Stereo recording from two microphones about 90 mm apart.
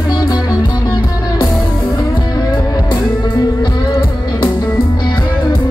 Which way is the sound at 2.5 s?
55° left (ahead or behind).